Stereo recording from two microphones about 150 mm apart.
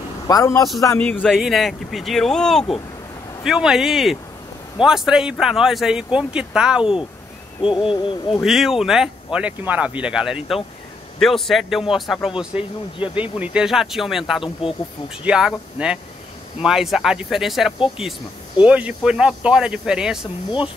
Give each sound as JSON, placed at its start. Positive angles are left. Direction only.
{"t": 0.3, "sound": "a man's voice", "side_deg": 20}
{"t": 0.9, "sound": "speech", "side_deg": 10}
{"t": 7.9, "sound": "speech", "side_deg": 35}
{"t": 8.4, "sound": "speech", "side_deg": 0}
{"t": 14.6, "sound": "speech", "side_deg": 40}
{"t": 15.2, "sound": "speech", "side_deg": -5}